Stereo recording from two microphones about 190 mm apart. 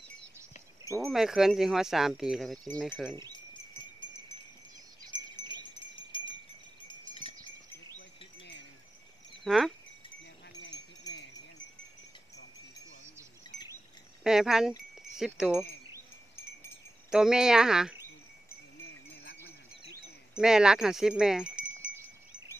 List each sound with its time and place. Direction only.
1.0 s speech: centre (ahead or behind)
5.4 s wind chime: 25° right (ahead or behind)
6.1 s wind chime: 25° left (ahead or behind)
8.4 s wind chime: 70° left (ahead or behind)
9.4 s speech: centre (ahead or behind)
14.2 s speech: 5° right (ahead or behind)
15.0 s wind chime: centre (ahead or behind)
17.1 s speech: 5° right (ahead or behind)
20.3 s speech: 5° right (ahead or behind)